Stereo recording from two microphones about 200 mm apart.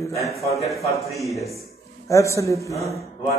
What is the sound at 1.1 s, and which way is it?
Speech, centre (ahead or behind).